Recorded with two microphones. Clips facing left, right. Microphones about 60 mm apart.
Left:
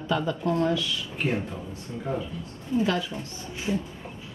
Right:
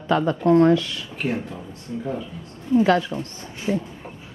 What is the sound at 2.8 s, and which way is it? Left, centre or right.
Speech, right.